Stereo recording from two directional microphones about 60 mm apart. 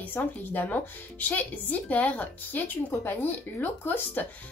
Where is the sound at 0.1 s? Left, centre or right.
Left.